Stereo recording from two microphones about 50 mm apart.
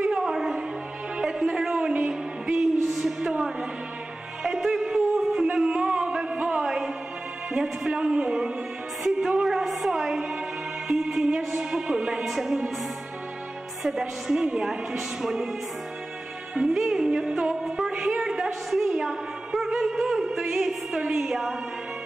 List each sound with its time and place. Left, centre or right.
0.0 s music: centre
5.7 s music: centre
9.0 s a sound: centre
9.9 s music: centre
11.5 s a woman's voice: centre
13.8 s a woman's voice: centre
16.5 s music: centre